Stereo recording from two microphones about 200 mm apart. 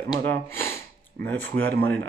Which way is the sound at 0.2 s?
10° left (ahead or behind).